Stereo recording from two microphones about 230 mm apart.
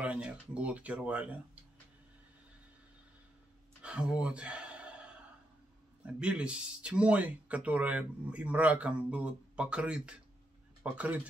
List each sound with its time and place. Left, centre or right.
0.0 s speech: centre
3.8 s a sound: centre
6.0 s speech: centre